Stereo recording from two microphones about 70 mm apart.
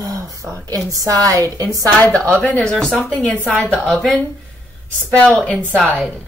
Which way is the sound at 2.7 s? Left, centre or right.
Centre.